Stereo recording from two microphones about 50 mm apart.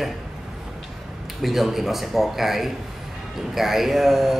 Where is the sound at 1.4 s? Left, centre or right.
Centre.